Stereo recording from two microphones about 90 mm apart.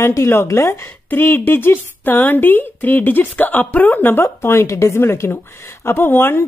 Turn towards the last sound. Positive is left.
turn(degrees=25)  # may be behind; listen again after turning